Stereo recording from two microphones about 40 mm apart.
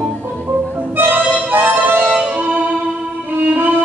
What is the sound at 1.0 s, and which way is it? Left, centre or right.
Music, right.